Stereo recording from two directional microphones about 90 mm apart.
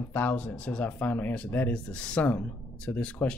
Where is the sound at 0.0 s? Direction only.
20° left (ahead or behind).